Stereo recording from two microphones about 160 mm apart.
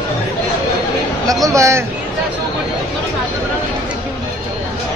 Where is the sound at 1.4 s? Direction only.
20° right (ahead or behind).